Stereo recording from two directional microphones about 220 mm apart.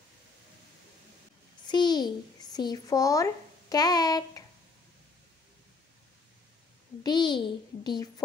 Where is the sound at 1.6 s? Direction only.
20° left (ahead or behind).